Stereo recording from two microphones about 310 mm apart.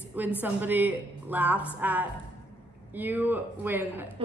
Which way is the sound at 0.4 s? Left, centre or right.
Centre.